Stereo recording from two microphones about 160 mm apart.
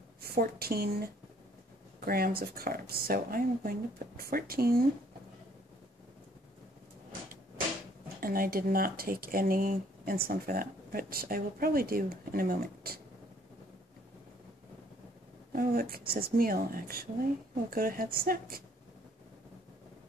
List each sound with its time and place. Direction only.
0.2 s a woman's voice: 75° right (ahead or behind)
8.2 s speech: 65° right (ahead or behind)
15.5 s speech: 65° right (ahead or behind)